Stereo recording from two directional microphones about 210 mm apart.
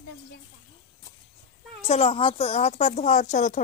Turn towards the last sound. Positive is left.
turn(degrees=35)  # may be behind; listen again after turning